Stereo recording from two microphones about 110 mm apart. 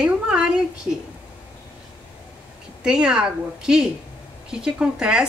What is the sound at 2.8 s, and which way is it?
A woman's voice, 5° right (ahead or behind).